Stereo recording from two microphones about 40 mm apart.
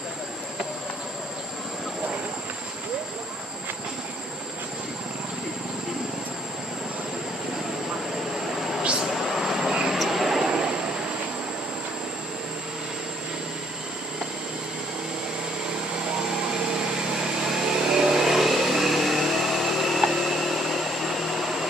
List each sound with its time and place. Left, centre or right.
9.1 s vehicle: centre
10.4 s vehicle: centre
17.6 s vehicle: centre